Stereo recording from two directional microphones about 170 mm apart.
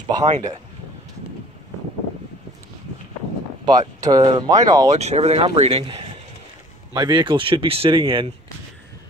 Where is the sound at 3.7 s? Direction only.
20° right (ahead or behind).